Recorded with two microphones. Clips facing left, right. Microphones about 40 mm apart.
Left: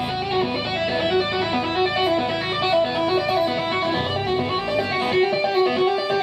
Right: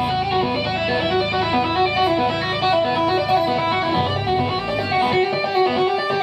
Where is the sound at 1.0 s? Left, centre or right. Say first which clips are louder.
Right 1 dB; centre.